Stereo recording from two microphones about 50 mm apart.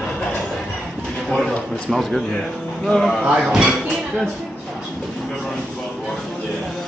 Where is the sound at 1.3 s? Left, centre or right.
Centre.